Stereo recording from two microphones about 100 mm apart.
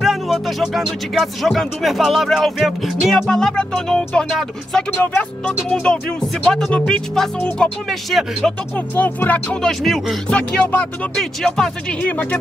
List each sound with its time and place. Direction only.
0.0 s speech: 5° right (ahead or behind)
4.9 s speech: 20° left (ahead or behind)
5.7 s speech: 10° left (ahead or behind)
8.7 s speech: 20° left (ahead or behind); by 10.1 s centre (ahead or behind)
10.3 s speech: 15° left (ahead or behind)
11.1 s speech: 5° left (ahead or behind)